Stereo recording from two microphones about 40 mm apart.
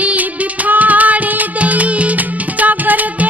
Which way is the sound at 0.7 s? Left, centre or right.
Right.